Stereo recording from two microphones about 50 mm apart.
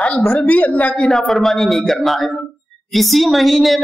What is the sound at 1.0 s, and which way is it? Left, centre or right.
A woman's voice, centre.